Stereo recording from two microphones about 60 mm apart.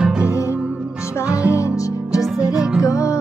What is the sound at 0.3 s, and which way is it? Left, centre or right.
Music, left.